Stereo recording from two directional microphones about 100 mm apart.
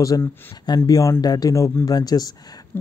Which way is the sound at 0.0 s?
35° left (ahead or behind).